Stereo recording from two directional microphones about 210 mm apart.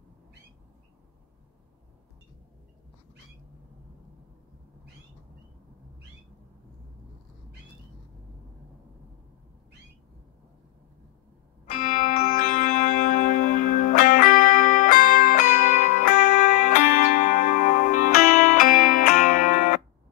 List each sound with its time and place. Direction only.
11.9 s music: 45° left (ahead or behind)